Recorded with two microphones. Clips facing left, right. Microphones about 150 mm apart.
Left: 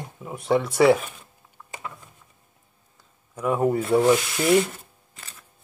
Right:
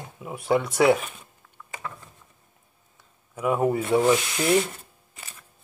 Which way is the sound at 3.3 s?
5° right (ahead or behind).